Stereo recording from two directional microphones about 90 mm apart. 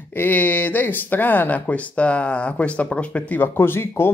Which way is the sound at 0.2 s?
20° left (ahead or behind).